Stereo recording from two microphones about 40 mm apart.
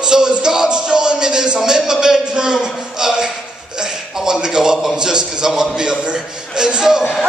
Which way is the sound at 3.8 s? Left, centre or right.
Centre.